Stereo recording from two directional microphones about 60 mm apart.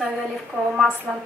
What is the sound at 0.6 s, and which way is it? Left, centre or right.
Speech, left.